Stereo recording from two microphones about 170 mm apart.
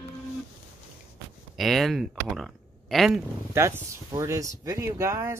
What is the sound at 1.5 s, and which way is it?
Speech, centre (ahead or behind).